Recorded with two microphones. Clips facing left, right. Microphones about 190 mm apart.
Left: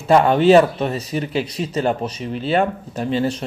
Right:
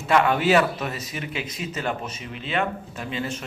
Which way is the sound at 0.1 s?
35° left (ahead or behind).